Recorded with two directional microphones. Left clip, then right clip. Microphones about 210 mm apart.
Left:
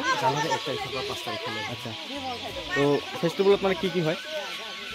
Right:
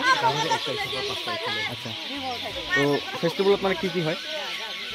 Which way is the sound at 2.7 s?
30° right (ahead or behind).